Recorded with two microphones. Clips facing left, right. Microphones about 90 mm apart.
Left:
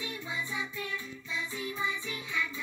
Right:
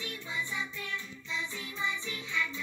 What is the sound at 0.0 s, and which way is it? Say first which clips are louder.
Music: left 1 dB; 15° left (ahead or behind).